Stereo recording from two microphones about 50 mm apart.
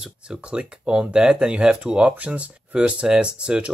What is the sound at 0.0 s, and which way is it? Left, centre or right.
Speech, centre.